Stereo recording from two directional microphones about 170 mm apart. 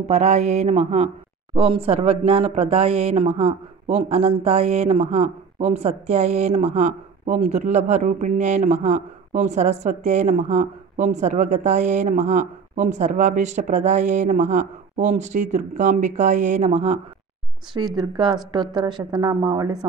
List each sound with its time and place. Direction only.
0.0 s speech: 40° right (ahead or behind)
17.9 s a woman's voice: 25° right (ahead or behind)